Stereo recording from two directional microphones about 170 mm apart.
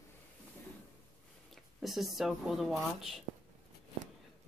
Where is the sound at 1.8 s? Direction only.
Centre (ahead or behind).